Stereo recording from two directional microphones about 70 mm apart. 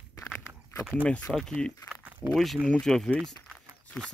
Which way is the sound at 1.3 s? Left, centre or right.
Centre.